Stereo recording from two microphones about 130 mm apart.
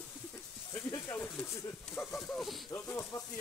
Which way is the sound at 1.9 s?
5° left (ahead or behind).